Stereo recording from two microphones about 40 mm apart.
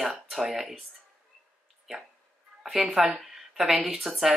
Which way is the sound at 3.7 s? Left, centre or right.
Centre.